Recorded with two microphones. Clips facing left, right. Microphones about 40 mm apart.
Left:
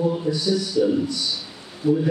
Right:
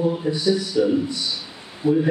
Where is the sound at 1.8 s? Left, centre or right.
Centre.